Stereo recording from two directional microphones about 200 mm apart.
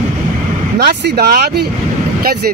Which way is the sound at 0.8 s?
55° right (ahead or behind).